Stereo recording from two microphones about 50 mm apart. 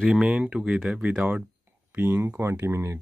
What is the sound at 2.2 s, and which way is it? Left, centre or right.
Speech, right.